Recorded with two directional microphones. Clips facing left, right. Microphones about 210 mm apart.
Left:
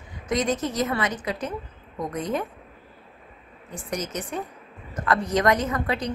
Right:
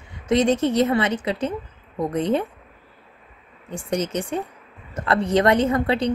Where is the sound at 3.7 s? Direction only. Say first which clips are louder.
Right 6 dB; 30° right (ahead or behind).